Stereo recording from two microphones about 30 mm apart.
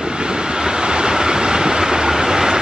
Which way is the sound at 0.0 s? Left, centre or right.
Right.